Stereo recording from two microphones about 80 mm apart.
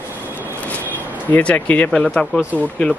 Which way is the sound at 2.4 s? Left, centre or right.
Centre.